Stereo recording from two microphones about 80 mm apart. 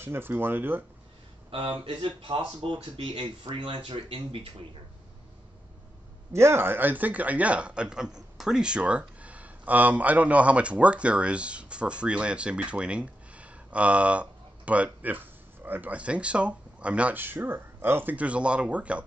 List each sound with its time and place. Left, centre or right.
0.0 s speech: right
1.6 s speech: right
6.3 s speech: right; by 19.0 s centre